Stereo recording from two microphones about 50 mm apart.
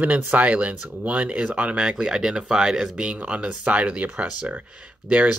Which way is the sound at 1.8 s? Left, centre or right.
Centre.